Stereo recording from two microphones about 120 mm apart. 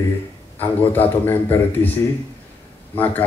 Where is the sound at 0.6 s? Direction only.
15° left (ahead or behind).